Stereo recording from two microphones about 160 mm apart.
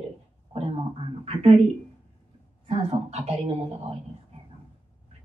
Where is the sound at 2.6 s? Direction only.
40° right (ahead or behind).